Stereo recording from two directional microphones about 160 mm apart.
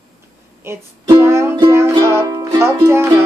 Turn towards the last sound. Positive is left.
turn(degrees=-15)  # may be behind; listen again after turning